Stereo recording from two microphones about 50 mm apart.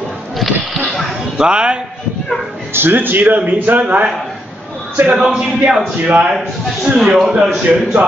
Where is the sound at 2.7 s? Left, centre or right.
Right.